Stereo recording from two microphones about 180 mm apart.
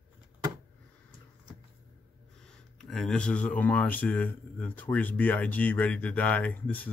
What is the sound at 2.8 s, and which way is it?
Speech, centre (ahead or behind).